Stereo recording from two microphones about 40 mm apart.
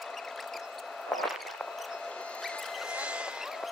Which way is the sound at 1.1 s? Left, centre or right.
Centre.